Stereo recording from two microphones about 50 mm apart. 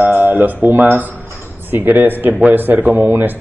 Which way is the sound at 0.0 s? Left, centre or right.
Right.